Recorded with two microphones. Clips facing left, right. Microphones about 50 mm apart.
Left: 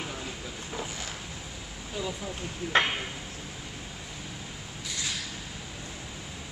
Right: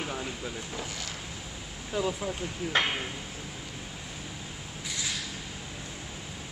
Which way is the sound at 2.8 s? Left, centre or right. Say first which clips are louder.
Left 1 dB; centre.